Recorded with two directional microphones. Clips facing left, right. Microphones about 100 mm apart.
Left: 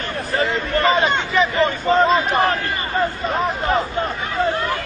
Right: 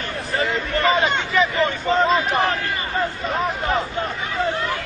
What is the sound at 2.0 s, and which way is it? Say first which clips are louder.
Crowd: left 2 dB; 35° left (ahead or behind).